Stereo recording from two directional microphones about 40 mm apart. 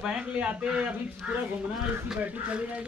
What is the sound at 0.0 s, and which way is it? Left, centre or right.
Speech, right.